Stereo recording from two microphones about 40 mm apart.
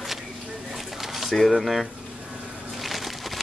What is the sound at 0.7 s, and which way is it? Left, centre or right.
Pigeon, centre.